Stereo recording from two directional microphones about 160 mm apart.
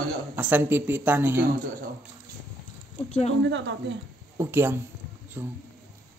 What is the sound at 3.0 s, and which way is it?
Speech, 45° left (ahead or behind).